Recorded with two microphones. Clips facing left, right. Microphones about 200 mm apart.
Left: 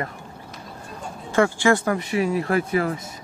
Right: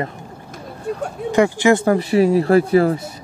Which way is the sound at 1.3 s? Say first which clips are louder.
Right 4 dB; 20° right (ahead or behind).